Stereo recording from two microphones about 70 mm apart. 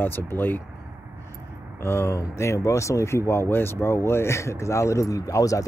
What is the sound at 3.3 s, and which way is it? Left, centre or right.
Speech, left.